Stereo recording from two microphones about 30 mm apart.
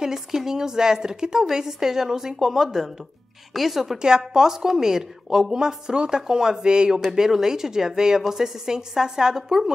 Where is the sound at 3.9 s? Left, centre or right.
Right.